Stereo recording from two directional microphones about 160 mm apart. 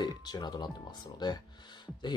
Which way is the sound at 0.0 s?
25° left (ahead or behind).